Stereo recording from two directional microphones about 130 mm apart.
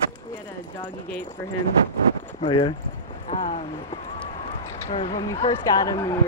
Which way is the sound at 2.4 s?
40° left (ahead or behind).